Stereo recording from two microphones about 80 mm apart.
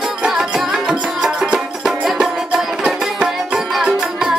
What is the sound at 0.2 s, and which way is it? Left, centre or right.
Music, centre.